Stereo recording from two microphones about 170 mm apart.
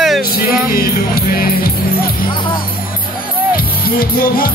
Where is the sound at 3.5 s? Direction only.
60° left (ahead or behind).